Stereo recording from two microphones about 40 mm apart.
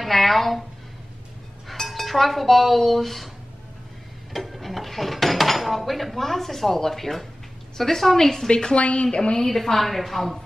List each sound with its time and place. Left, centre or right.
0.0 s speech: centre
1.7 s speech: centre
4.3 s a woman's voice: centre
8.5 s a woman's voice: left
9.4 s a woman's voice: centre